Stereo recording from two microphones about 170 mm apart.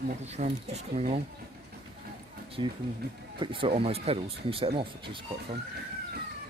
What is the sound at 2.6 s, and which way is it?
Speech, 30° right (ahead or behind).